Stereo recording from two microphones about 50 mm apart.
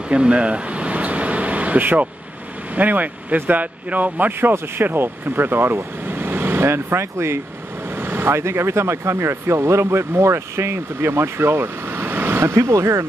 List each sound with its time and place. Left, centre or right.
0.1 s air conditioning: right
2.7 s speech: right
4.4 s speech: right
6.0 s vehicle: right
8.0 s speech: right